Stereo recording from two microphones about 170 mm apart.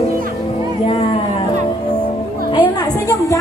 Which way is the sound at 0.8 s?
35° left (ahead or behind).